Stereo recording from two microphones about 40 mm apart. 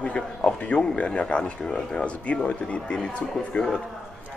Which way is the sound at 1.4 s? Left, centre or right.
Centre.